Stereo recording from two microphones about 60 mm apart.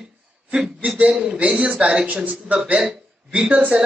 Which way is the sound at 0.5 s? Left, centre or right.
Centre.